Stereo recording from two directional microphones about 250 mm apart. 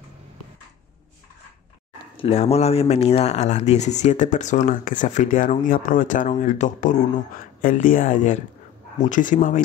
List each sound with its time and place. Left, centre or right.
2.1 s speech: left